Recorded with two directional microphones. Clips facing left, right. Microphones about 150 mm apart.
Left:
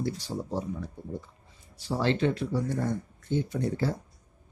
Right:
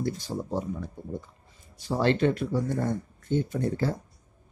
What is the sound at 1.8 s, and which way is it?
Speech, 55° right (ahead or behind).